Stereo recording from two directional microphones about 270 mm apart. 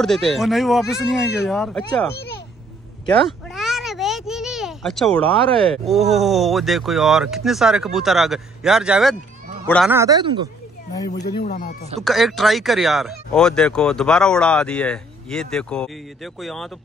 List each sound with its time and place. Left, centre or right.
0.0 s speech: centre
2.1 s a sound: left
3.4 s meow: centre
5.9 s speech: centre
11.1 s speech: left
12.0 s speech: centre